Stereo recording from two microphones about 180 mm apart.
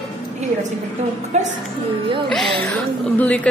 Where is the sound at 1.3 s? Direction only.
40° right (ahead or behind).